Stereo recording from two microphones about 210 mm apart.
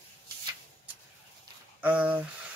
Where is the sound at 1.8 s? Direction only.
5° right (ahead or behind).